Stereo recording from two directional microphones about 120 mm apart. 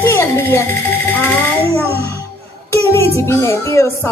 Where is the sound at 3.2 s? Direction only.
25° left (ahead or behind).